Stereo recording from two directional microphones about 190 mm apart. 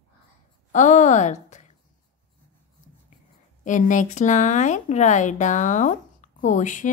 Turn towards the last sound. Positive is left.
turn(degrees=40)  # may be behind; listen again after turning